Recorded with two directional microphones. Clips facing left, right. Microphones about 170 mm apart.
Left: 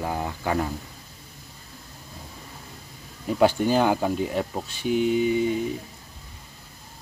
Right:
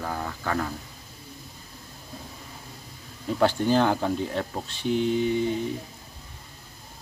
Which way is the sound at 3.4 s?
10° left (ahead or behind).